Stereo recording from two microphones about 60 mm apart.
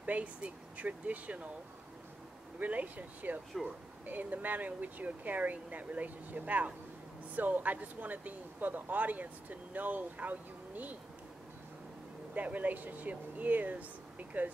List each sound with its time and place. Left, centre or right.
0.0 s speech: right
2.6 s speech: right
12.4 s speech: right